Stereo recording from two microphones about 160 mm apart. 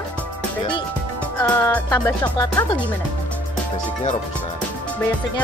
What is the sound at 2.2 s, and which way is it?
Speech, 25° left (ahead or behind).